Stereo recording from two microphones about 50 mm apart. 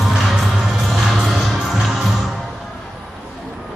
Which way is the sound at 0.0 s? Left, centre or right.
Centre.